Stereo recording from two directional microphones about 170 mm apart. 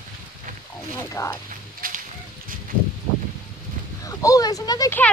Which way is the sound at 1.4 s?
50° right (ahead or behind).